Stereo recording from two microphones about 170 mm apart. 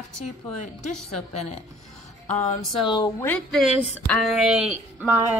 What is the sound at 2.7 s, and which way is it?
Speech, 30° left (ahead or behind).